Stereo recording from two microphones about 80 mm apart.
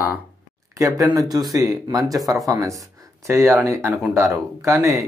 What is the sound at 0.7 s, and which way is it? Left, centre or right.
Speech, right.